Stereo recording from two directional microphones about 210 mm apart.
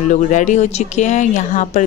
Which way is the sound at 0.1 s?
35° left (ahead or behind).